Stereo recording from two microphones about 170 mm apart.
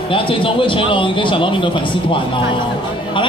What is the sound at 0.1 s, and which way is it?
A man's voice, 30° left (ahead or behind).